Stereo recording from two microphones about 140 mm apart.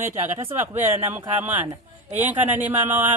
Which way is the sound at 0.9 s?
15° right (ahead or behind).